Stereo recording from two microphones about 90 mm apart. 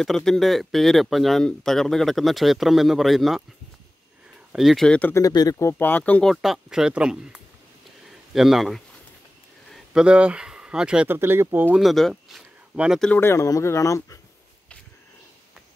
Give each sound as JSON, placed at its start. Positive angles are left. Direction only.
{"t": 0.0, "sound": "speech", "side_deg": 5}
{"t": 4.5, "sound": "speech", "side_deg": 0}
{"t": 4.8, "sound": "speech", "side_deg": 15}
{"t": 5.3, "sound": "speech", "side_deg": 45}
{"t": 5.6, "sound": "speech", "side_deg": 25}
{"t": 6.2, "sound": "speech", "side_deg": 0}
{"t": 9.9, "sound": "speech", "side_deg": -10}
{"t": 11.1, "sound": "speech", "side_deg": -25}
{"t": 11.7, "sound": "speech", "side_deg": 0}
{"t": 13.1, "sound": "speech", "side_deg": 25}